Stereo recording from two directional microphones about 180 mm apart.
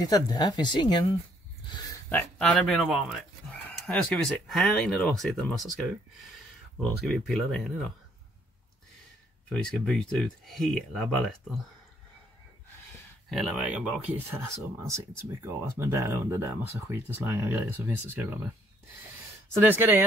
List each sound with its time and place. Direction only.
0.0 s speech: 20° left (ahead or behind)
2.0 s speech: 10° left (ahead or behind)
7.1 s speech: centre (ahead or behind)
9.5 s speech: 5° left (ahead or behind)
13.3 s speech: 5° right (ahead or behind)
19.5 s speech: 10° right (ahead or behind)